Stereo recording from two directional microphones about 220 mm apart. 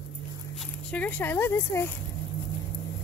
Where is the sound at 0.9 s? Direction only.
5° left (ahead or behind).